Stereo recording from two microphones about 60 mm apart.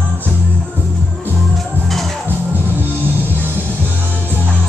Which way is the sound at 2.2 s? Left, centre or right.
Right.